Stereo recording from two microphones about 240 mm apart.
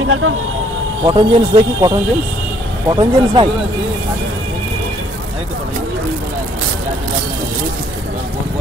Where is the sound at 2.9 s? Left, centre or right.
Right.